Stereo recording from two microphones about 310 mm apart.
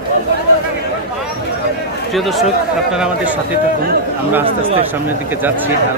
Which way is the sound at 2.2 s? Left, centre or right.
Centre.